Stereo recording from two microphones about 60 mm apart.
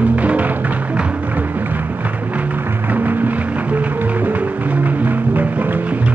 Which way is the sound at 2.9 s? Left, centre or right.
Right.